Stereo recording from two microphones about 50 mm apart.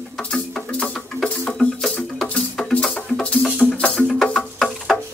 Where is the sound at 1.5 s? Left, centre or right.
Centre.